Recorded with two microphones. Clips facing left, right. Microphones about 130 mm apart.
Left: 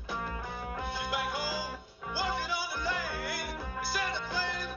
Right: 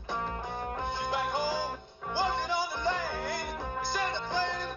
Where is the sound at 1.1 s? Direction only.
20° right (ahead or behind).